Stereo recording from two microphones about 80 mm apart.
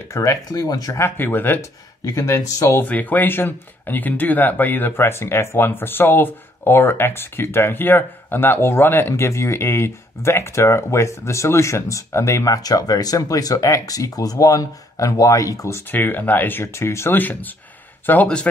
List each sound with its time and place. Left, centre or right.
0.1 s speech: left
0.9 s speech: left
1.6 s speech: left
2.8 s speech: left
12.6 s speech: left
15.9 s speech: left